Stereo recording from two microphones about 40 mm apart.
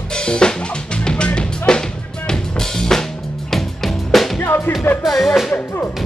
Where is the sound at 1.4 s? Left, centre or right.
Centre.